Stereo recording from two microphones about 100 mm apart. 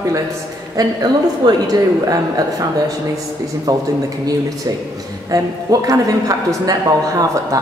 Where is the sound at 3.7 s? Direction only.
35° right (ahead or behind).